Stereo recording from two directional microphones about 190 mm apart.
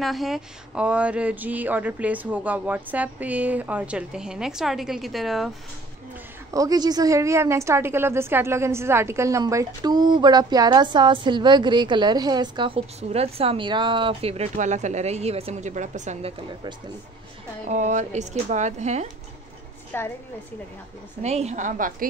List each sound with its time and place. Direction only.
0.0 s speech: centre (ahead or behind)
6.5 s a woman's voice: 20° right (ahead or behind); by 19.0 s 35° right (ahead or behind)
19.9 s a woman's voice: 10° left (ahead or behind)
21.2 s speech: 35° right (ahead or behind)